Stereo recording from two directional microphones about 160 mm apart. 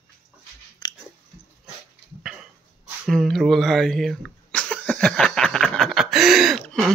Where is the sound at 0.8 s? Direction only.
25° left (ahead or behind).